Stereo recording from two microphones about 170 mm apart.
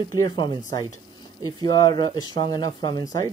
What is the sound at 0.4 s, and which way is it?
Speech, 25° left (ahead or behind).